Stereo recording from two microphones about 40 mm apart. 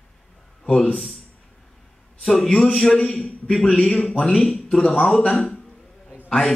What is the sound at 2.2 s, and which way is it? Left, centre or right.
A man's voice, centre.